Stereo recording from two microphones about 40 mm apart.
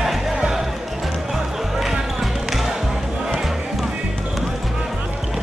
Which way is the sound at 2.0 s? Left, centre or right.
Centre.